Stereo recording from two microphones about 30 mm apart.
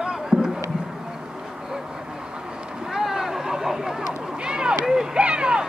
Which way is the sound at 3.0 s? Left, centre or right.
Centre.